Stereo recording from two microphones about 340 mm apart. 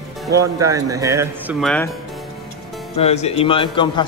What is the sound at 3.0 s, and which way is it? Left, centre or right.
A man's voice, centre.